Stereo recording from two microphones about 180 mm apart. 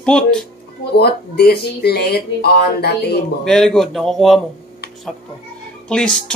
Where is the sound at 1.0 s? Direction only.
60° left (ahead or behind).